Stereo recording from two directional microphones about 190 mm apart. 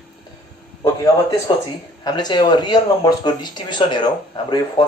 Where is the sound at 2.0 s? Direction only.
20° left (ahead or behind).